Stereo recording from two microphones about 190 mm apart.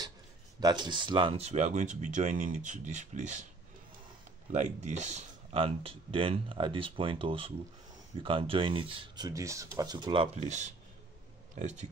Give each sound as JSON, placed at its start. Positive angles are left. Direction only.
{"t": 0.6, "sound": "speech", "side_deg": -20}
{"t": 4.5, "sound": "speech", "side_deg": -40}